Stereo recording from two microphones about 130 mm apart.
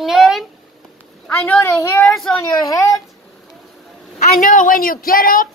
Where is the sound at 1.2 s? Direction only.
10° left (ahead or behind).